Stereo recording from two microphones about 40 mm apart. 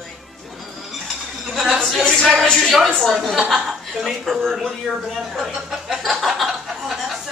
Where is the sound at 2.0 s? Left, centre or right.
Centre.